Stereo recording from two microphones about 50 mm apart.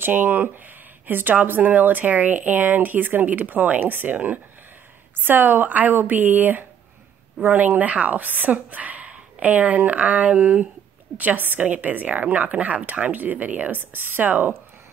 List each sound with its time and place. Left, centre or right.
0.0 s a woman's voice: right
13.7 s speech: right